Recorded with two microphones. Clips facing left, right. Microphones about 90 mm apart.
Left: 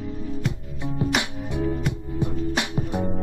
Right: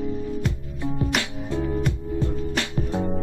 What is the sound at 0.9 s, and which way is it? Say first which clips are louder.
Music: left 2 dB; 15° left (ahead or behind).